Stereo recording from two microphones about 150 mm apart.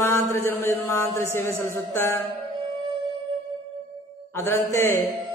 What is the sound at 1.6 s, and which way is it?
Speech, 15° left (ahead or behind).